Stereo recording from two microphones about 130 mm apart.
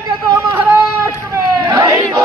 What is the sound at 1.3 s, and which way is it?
Chatter, 25° right (ahead or behind).